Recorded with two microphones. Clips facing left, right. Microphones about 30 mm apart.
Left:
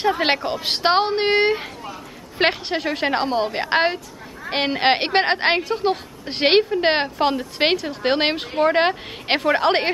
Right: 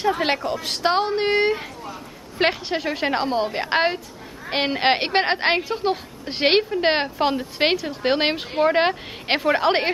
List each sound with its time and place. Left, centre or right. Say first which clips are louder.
0.2 s a woman's voice: left 2 dB; left
1.3 s a woman's voice: left 2 dB; centre